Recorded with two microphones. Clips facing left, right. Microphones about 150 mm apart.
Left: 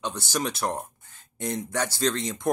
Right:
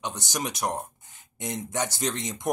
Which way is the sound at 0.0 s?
15° right (ahead or behind).